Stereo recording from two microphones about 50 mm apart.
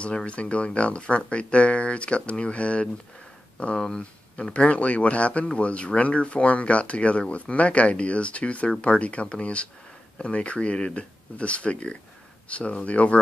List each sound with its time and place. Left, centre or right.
0.0 s speech: left